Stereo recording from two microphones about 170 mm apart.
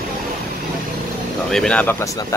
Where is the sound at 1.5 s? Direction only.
5° left (ahead or behind).